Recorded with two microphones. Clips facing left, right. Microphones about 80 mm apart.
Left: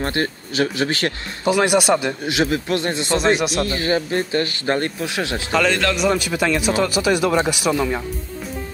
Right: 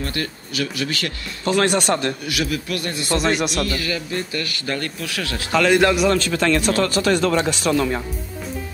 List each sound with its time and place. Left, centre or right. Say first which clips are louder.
0.0 s speech: left 5 dB; left
1.4 s speech: left 2 dB; centre
2.2 s speech: left 4 dB; left
5.7 s a man's voice: right 4 dB; centre
6.1 s speech: right 1 dB; centre